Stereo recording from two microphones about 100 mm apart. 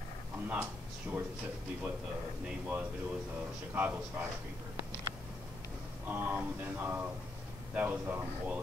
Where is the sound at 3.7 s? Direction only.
15° right (ahead or behind).